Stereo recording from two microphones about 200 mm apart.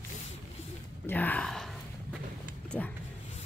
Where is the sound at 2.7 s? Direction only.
10° left (ahead or behind).